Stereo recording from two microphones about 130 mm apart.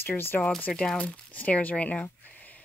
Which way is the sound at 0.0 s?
15° left (ahead or behind).